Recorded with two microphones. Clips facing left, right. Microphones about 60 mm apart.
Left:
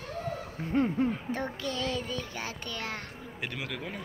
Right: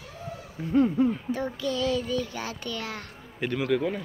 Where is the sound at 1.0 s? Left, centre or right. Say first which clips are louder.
Right 4 dB; left.